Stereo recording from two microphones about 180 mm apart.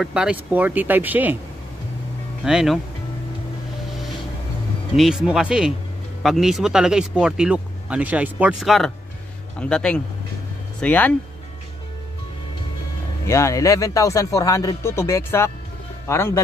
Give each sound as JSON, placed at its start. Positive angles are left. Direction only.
{"t": 0.0, "sound": "speech", "side_deg": -5}
{"t": 2.4, "sound": "speech", "side_deg": 0}
{"t": 4.9, "sound": "speech", "side_deg": 0}
{"t": 13.2, "sound": "speech", "side_deg": 15}